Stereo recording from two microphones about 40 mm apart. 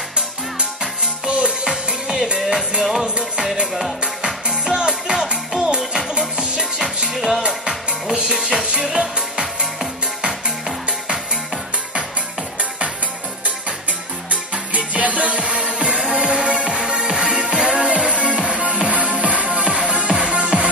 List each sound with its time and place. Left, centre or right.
1.2 s music: right
2.8 s music: centre
4.0 s music: right
7.2 s music: centre
14.3 s music: right